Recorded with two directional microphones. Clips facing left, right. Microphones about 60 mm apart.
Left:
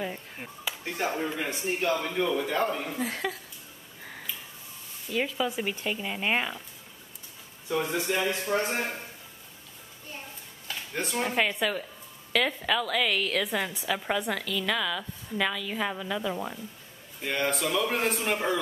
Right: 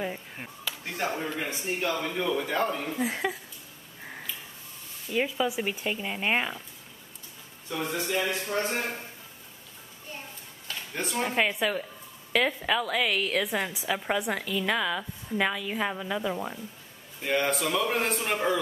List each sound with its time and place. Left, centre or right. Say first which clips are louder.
0.0 s a sound: right 1 dB; centre
0.9 s a man's voice: left 1 dB; centre
3.0 s a woman's voice: right 2 dB; centre
5.1 s a woman's voice: right 1 dB; centre
7.7 s speech: left 2 dB; centre
8.2 s speech: even; left
8.7 s a man's voice: even; centre
10.9 s a man's voice: even; centre